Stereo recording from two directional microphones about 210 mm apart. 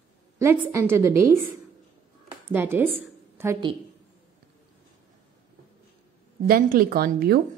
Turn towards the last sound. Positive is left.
turn(degrees=-45)  # may be behind; listen again after turning